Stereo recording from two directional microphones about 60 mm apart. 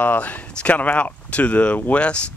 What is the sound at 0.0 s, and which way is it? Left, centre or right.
Speech, left.